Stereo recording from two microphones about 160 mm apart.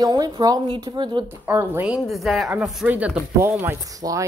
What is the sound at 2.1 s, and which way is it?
Speech, centre (ahead or behind).